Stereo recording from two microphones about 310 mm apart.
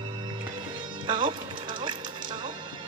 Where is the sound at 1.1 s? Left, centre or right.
Centre.